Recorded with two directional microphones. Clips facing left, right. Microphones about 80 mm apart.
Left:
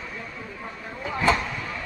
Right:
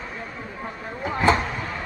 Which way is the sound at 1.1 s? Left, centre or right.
Right.